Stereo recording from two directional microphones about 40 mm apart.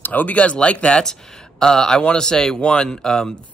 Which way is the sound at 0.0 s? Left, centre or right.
Left.